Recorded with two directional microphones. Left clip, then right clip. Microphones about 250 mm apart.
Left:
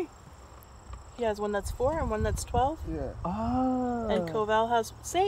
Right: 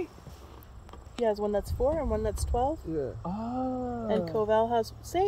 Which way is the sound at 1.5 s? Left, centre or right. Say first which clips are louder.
Right 1 dB; left.